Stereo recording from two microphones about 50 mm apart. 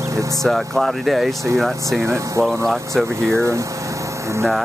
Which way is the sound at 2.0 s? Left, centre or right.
Right.